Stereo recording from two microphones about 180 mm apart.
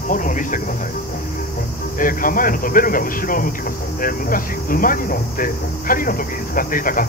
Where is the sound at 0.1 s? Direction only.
45° left (ahead or behind).